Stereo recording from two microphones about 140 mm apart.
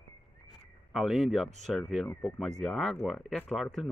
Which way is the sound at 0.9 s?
Centre (ahead or behind).